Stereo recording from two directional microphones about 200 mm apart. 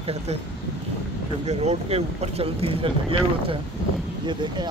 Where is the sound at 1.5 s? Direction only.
30° right (ahead or behind).